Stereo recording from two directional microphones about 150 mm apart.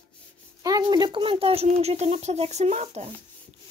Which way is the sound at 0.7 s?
25° right (ahead or behind).